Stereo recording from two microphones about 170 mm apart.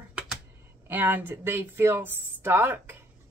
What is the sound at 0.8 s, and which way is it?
Speech, 10° right (ahead or behind).